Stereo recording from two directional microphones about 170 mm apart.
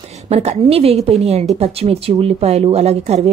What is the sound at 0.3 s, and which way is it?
A woman's voice, 40° right (ahead or behind).